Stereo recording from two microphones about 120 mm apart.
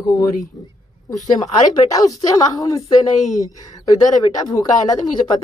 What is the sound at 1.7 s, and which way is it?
Speech, 30° left (ahead or behind).